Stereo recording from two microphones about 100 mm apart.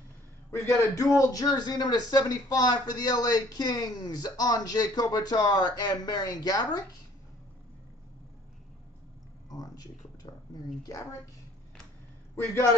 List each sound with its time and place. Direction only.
0.5 s speech: 30° left (ahead or behind)
9.5 s a sound: 40° left (ahead or behind)
10.8 s speech: 35° left (ahead or behind)